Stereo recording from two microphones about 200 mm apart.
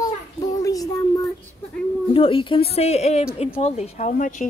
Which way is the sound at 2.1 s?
25° left (ahead or behind).